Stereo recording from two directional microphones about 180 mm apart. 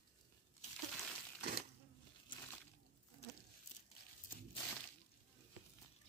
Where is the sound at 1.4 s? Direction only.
65° right (ahead or behind).